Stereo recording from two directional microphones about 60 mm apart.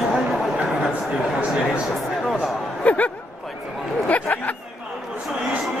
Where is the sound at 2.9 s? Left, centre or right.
Left.